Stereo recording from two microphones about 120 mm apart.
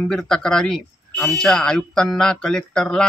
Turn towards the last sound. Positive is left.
turn(degrees=5)  # may be behind; listen again after turning